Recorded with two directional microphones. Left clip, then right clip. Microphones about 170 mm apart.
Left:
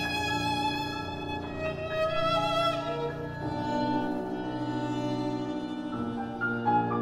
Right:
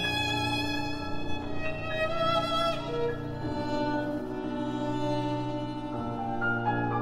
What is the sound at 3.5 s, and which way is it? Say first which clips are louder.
Music: left 1 dB; 25° left (ahead or behind).